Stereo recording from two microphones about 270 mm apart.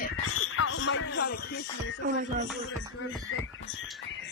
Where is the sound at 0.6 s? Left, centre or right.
Left.